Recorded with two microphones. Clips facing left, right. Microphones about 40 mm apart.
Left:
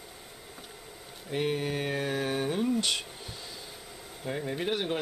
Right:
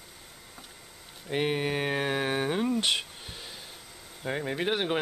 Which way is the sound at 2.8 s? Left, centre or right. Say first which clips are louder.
Right 3 dB; right.